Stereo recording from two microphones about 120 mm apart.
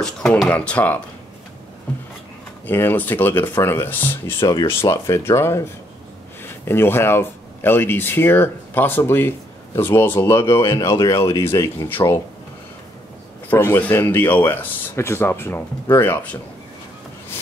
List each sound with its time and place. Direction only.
0.0 s speech: 5° left (ahead or behind)
2.6 s speech: 20° left (ahead or behind)
4.4 s speech: 35° left (ahead or behind)
4.6 s speech: 25° left (ahead or behind)
13.5 s speech: 15° left (ahead or behind)